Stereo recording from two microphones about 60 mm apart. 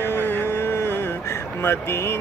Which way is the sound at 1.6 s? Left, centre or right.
Left.